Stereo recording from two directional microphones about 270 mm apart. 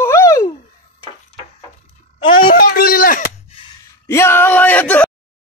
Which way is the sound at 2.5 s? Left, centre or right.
Left.